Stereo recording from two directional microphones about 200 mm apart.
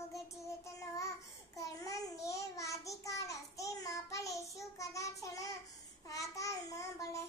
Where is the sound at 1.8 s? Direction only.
15° left (ahead or behind).